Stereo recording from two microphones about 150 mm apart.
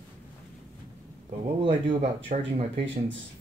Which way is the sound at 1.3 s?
40° right (ahead or behind).